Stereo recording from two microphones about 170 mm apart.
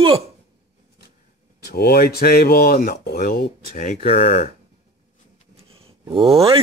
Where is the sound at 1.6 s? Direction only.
65° left (ahead or behind); by 4.5 s 35° left (ahead or behind).